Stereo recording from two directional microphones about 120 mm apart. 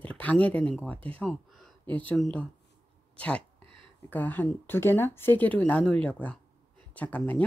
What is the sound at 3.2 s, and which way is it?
Speech, 10° left (ahead or behind).